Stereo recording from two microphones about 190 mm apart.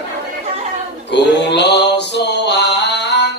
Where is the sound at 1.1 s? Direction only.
65° left (ahead or behind).